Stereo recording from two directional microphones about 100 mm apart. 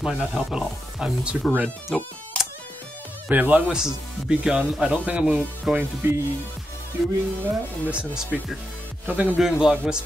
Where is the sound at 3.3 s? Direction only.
15° right (ahead or behind).